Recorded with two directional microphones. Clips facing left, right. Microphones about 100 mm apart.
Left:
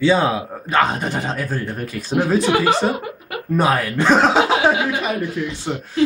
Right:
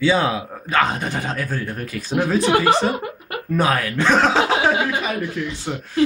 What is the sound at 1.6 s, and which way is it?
Speech, 15° left (ahead or behind).